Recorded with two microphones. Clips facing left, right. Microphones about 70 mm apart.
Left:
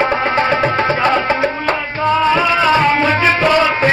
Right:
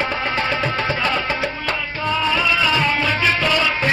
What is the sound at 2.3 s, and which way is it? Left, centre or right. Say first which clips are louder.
Music: left 6 dB; left.